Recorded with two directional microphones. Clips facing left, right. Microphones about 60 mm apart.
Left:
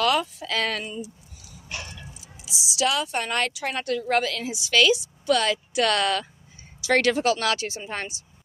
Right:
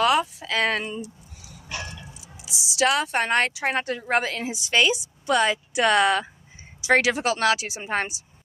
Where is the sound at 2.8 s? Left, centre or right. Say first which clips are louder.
Right 3 dB; right.